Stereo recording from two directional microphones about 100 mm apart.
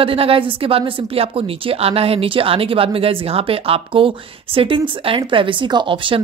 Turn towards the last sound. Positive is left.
turn(degrees=-60)  # may be behind; listen again after turning